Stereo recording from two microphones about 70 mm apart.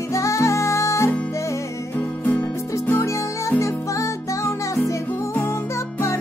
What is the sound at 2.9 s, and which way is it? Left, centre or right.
Music, left.